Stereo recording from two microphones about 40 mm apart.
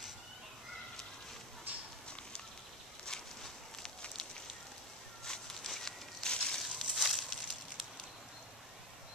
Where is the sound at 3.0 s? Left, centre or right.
Centre.